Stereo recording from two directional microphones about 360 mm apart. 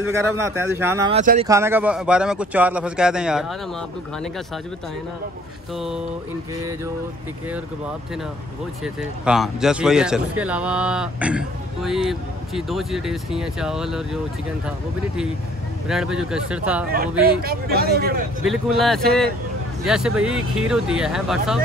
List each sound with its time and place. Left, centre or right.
0.4 s speech: centre
1.5 s speech: centre
8.8 s speech: centre
15.9 s speech: centre
17.2 s speech: right
18.4 s speech: centre